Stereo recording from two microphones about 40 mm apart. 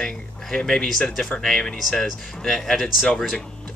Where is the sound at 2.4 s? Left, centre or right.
Centre.